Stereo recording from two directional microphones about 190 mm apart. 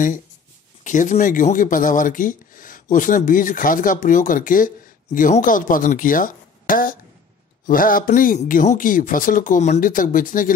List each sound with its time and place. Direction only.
0.8 s speech: 40° left (ahead or behind)